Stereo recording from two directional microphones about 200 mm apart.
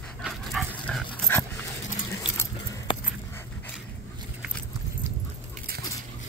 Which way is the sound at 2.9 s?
25° left (ahead or behind).